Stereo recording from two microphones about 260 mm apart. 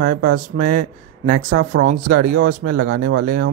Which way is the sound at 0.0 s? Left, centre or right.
Right.